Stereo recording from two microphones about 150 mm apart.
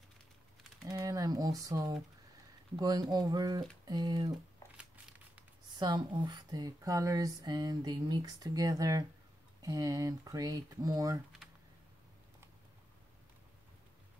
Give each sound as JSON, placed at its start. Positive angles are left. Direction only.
{"t": 0.8, "sound": "speech", "side_deg": -25}
{"t": 5.8, "sound": "speech", "side_deg": -30}